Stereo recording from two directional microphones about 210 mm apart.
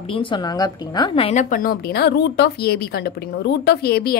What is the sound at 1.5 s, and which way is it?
A woman's voice, 45° left (ahead or behind).